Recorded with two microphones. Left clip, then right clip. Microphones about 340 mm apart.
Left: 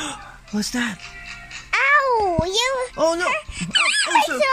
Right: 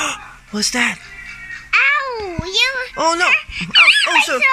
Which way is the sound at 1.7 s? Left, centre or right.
Left.